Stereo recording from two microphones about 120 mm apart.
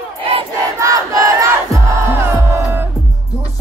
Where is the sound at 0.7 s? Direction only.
30° right (ahead or behind).